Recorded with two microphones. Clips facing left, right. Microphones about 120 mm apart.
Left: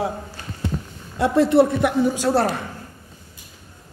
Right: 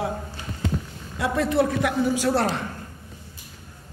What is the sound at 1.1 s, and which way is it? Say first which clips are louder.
A man's voice: left 6 dB; 35° left (ahead or behind).